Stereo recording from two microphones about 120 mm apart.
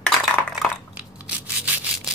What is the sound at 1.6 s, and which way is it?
Rub, 10° right (ahead or behind).